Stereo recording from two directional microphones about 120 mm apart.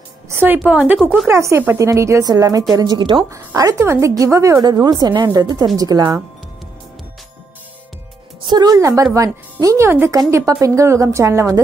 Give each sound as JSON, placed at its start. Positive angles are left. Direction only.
{"t": 0.3, "sound": "music", "side_deg": -15}
{"t": 0.6, "sound": "a woman's voice", "side_deg": -10}
{"t": 1.2, "sound": "a woman's voice", "side_deg": -25}
{"t": 3.3, "sound": "a woman's voice", "side_deg": -25}
{"t": 8.5, "sound": "speech", "side_deg": -35}